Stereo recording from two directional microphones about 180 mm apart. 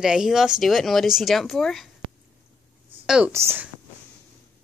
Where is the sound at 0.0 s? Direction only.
5° right (ahead or behind).